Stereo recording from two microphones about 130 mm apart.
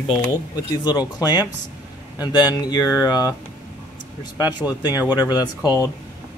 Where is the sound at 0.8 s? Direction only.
35° left (ahead or behind).